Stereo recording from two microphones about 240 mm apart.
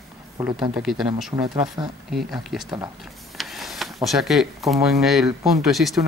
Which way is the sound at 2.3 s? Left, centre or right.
Centre.